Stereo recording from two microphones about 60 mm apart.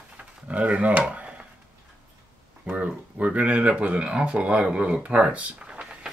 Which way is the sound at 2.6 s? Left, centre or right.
Right.